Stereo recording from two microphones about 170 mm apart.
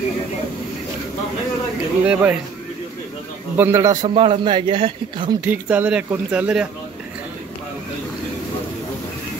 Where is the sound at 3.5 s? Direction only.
15° right (ahead or behind); by 5.3 s 30° right (ahead or behind).